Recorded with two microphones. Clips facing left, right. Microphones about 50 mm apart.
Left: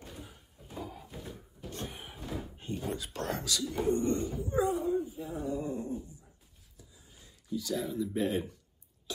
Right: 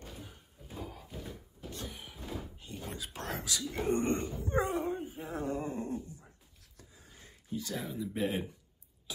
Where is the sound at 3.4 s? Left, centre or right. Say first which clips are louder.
Left 3 dB; centre.